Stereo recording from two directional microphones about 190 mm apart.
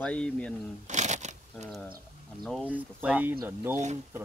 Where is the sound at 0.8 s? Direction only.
40° right (ahead or behind).